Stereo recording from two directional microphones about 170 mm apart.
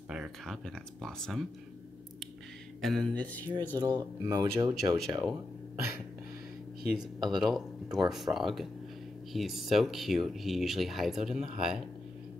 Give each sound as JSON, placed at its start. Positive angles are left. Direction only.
{"t": 0.1, "sound": "speech", "side_deg": 0}
{"t": 2.8, "sound": "speech", "side_deg": 5}
{"t": 3.7, "sound": "speech", "side_deg": -25}
{"t": 7.2, "sound": "speech", "side_deg": 0}